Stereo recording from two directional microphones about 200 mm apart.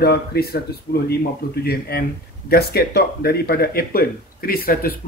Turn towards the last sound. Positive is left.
turn(degrees=45)  # may be behind; listen again after turning